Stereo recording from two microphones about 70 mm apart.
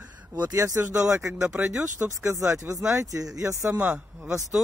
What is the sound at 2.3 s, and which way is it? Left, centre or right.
Speech, right.